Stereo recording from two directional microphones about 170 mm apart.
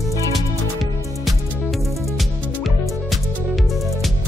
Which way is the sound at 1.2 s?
Centre (ahead or behind).